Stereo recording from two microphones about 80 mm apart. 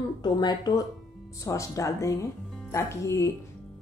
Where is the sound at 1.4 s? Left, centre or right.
Left.